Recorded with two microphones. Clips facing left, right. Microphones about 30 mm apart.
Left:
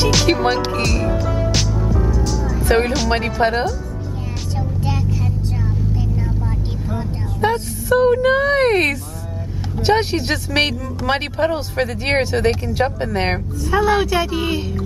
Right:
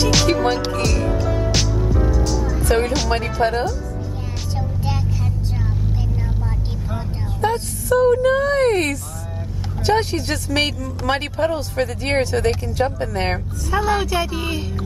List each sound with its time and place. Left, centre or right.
0.3 s music: left
1.5 s music: centre
2.6 s speech: centre
4.6 s vehicle: centre
7.4 s a sound: left
7.9 s speech: left